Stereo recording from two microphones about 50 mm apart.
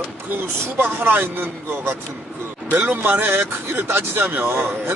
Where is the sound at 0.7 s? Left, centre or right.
Right.